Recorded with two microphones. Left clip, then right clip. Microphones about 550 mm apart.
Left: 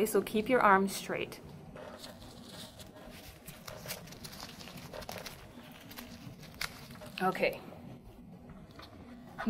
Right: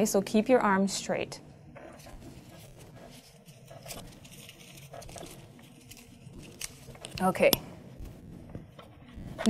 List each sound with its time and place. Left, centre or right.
0.0 s a woman's voice: right
7.2 s a woman's voice: right